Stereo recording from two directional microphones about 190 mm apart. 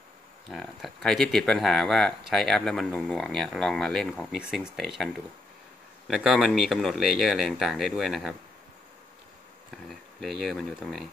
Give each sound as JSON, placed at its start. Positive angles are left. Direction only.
{"t": 0.5, "sound": "speech", "side_deg": 0}
{"t": 9.8, "sound": "speech", "side_deg": 0}